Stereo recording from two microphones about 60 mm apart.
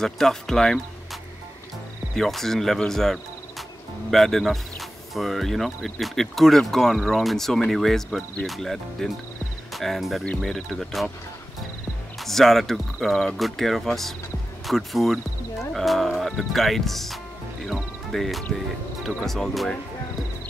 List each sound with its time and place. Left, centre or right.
0.0 s speech: centre
2.1 s speech: centre
12.2 s speech: centre